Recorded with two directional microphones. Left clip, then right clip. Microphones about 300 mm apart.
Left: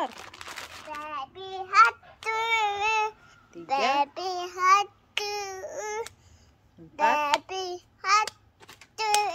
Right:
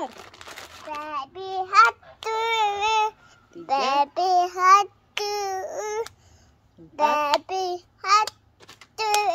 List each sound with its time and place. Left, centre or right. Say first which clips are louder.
0.0 s crumpling: left 1 dB; centre
1.0 s child singing: right 5 dB; centre
7.2 s child singing: right 4 dB; centre
8.5 s child singing: right 2 dB; centre
8.9 s a sound: right 2 dB; centre